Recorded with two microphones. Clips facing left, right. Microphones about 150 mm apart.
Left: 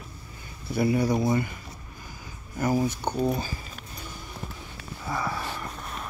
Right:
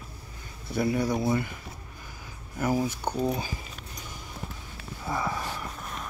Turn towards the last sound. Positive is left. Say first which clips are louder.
# even
turn(degrees=-20)  # may be behind; listen again after turning